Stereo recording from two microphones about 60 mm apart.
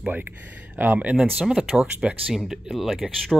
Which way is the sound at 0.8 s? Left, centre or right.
Right.